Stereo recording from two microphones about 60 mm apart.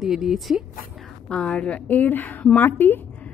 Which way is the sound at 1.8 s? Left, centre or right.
Left.